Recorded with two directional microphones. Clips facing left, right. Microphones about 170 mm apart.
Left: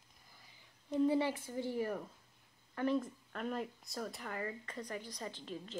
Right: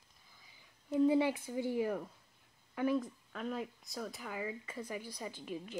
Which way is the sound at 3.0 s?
Centre (ahead or behind).